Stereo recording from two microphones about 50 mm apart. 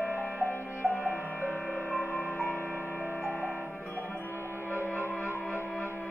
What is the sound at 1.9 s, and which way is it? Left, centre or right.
Music, left.